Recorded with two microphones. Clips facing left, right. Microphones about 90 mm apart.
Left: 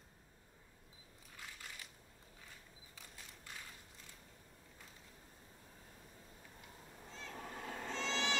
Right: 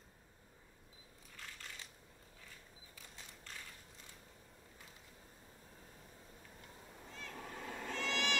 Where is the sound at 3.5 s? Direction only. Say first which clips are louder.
Even; 15° left (ahead or behind).